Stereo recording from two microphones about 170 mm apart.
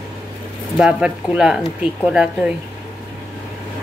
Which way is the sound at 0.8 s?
5° right (ahead or behind).